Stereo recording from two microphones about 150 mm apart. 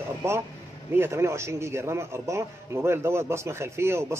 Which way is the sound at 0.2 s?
20° right (ahead or behind).